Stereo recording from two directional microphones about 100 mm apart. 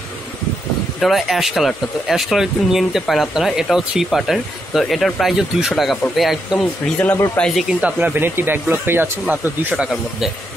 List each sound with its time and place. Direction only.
0.9 s speech: centre (ahead or behind)
7.8 s speech: 20° right (ahead or behind)